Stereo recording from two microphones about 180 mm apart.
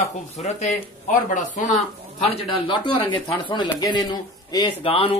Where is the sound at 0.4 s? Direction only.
40° left (ahead or behind).